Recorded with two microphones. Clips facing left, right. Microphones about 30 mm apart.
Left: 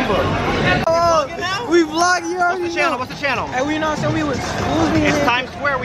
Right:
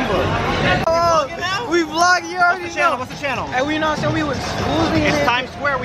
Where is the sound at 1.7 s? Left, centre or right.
Centre.